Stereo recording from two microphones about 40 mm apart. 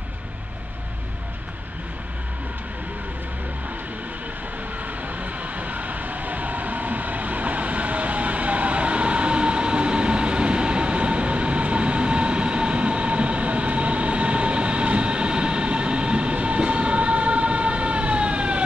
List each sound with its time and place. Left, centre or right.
4.8 s vehicle: right